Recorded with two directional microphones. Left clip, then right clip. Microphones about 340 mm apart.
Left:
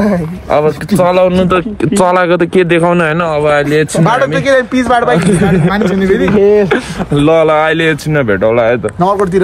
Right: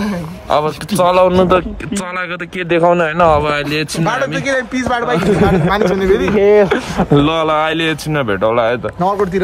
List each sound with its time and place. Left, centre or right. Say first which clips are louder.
0.5 s speech: left 4 dB; centre
2.0 s speech: left 13 dB; centre
5.4 s speech: left 1 dB; centre